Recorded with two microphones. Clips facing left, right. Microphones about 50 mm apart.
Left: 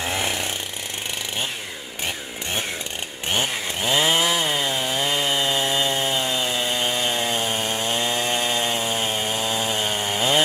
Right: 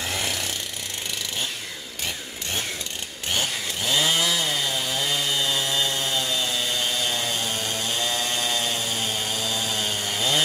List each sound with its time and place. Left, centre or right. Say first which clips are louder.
0.0 s jackhammer: left 3 dB; left
3.3 s chainsaw: left 3 dB; left